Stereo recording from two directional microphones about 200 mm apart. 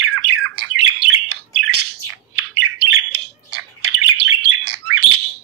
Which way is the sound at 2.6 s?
90° right.